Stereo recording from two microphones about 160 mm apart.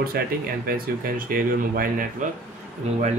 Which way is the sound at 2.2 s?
55° right (ahead or behind).